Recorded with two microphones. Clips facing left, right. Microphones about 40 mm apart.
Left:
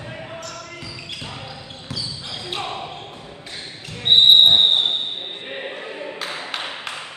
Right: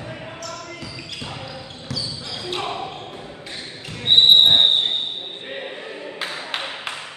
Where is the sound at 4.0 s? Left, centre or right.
Left.